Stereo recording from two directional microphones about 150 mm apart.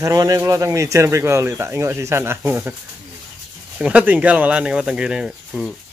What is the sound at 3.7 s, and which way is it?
Speech, 10° right (ahead or behind).